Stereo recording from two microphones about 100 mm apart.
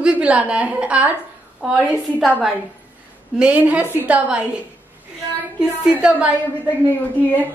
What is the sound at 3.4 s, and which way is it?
A woman's voice, 15° right (ahead or behind).